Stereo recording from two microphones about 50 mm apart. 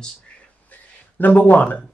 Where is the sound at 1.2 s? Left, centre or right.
Left.